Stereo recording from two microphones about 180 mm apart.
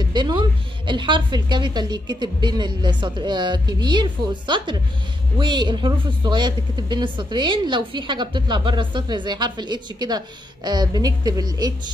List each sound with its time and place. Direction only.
0.0 s speech: 25° right (ahead or behind)